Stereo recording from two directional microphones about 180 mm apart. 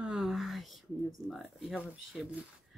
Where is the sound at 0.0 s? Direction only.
5° right (ahead or behind).